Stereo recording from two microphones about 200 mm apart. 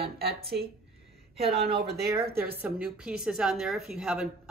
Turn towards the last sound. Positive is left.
turn(degrees=0)  # may be behind; listen again after turning